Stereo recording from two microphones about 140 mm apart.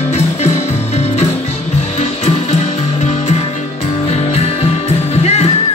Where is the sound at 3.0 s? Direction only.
55° left (ahead or behind).